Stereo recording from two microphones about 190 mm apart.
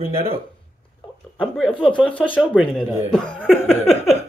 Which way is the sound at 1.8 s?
5° left (ahead or behind).